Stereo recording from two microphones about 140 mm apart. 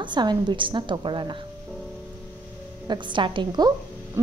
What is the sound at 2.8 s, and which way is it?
Speech, 35° right (ahead or behind).